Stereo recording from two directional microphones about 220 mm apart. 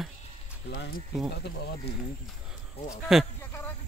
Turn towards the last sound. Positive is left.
turn(degrees=0)  # may be behind; listen again after turning